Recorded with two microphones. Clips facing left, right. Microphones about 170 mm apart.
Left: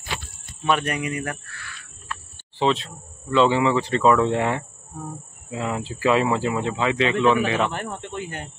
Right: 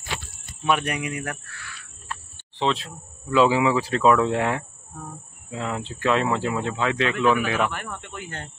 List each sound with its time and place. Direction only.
0.7 s speech: 10° right (ahead or behind)
7.7 s speech: 30° left (ahead or behind)